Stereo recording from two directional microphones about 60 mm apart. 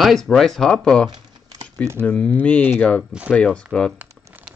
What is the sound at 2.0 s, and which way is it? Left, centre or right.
Speech, left.